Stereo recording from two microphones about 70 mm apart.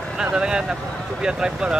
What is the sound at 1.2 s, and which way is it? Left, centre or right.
Speech, centre.